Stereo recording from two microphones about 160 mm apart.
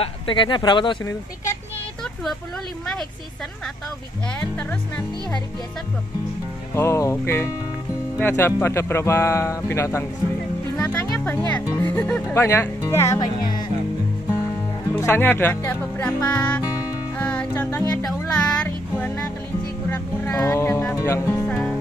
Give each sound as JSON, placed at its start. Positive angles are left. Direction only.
{"t": 0.0, "sound": "speech", "side_deg": 30}
{"t": 4.4, "sound": "speech", "side_deg": 10}
{"t": 6.7, "sound": "speech", "side_deg": 15}
{"t": 10.8, "sound": "music", "side_deg": 10}
{"t": 11.7, "sound": "speech", "side_deg": 10}
{"t": 14.9, "sound": "speech", "side_deg": 15}
{"t": 17.2, "sound": "music", "side_deg": 10}
{"t": 18.4, "sound": "child singing", "side_deg": 10}
{"t": 19.9, "sound": "speech", "side_deg": 10}
{"t": 20.9, "sound": "music", "side_deg": 15}